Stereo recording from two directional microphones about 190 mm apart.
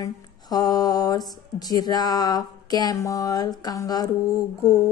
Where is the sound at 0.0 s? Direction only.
20° left (ahead or behind).